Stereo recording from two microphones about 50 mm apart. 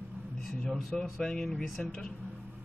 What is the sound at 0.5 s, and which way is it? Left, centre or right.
Speech, centre.